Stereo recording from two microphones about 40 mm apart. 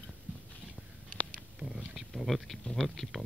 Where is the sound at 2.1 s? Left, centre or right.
Centre.